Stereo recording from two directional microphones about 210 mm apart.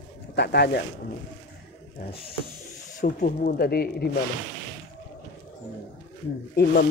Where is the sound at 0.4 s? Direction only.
50° left (ahead or behind).